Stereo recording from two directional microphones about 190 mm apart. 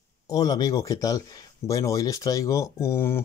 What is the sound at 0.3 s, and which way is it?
Speech, 20° left (ahead or behind).